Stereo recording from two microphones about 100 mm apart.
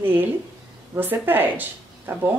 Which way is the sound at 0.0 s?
20° right (ahead or behind).